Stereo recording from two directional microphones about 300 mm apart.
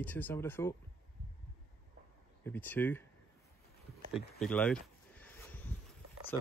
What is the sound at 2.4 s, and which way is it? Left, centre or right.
Speech, centre.